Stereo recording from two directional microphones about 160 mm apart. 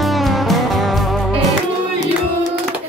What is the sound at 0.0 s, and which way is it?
Music, centre (ahead or behind).